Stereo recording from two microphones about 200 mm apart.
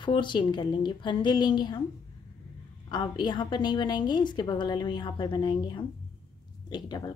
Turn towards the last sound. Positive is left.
turn(degrees=20)  # may be behind; listen again after turning